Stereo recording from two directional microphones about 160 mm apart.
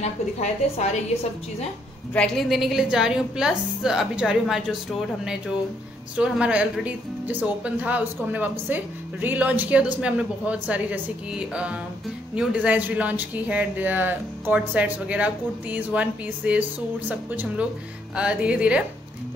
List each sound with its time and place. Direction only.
0.0 s a woman's voice: 45° left (ahead or behind)
2.1 s a woman's voice: 5° left (ahead or behind)
6.1 s speech: 5° right (ahead or behind)